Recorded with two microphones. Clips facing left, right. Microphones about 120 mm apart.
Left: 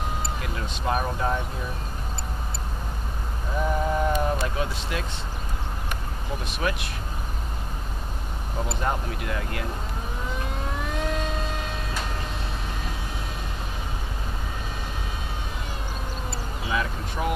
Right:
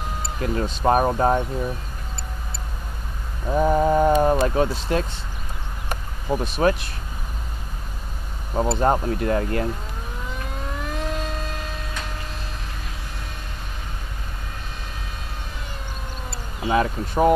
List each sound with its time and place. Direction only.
0.4 s speech: 40° right (ahead or behind)
3.5 s speech: 35° right (ahead or behind)
5.9 s a sound: 35° right (ahead or behind)
8.5 s speech: 40° right (ahead or behind)
10.7 s vehicle: centre (ahead or behind)
16.6 s speech: 40° right (ahead or behind)